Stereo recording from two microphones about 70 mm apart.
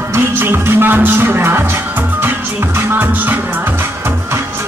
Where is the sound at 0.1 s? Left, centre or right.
Right.